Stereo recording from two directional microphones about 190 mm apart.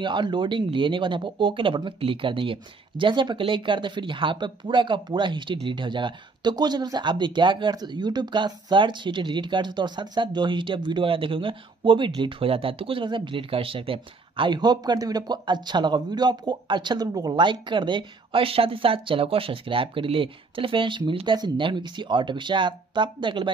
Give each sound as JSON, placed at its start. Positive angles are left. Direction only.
{"t": 0.0, "sound": "speech", "side_deg": -25}